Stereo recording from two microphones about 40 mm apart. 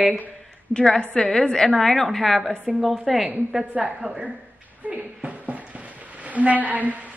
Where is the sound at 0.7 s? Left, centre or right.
Centre.